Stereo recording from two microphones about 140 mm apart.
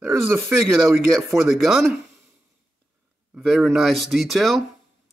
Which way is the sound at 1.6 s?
Centre (ahead or behind).